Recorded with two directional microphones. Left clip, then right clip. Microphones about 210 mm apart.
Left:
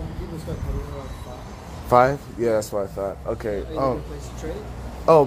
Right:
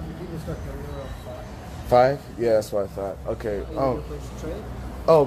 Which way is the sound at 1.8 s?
20° left (ahead or behind).